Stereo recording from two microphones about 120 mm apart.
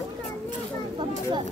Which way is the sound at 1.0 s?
40° right (ahead or behind).